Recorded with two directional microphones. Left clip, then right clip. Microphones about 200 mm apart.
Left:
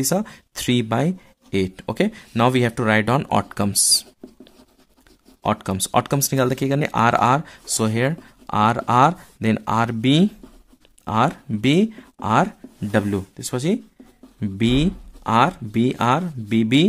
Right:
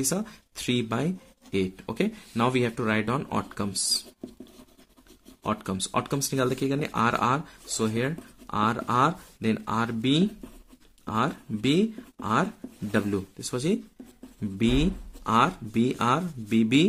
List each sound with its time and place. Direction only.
0.0 s speech: 35° left (ahead or behind)
5.4 s speech: 40° left (ahead or behind)